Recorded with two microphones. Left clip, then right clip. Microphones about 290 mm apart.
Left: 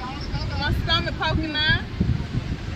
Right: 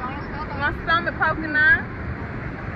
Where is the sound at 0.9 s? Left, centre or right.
Centre.